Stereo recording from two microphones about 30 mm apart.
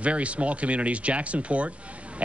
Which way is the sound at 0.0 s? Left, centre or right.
Right.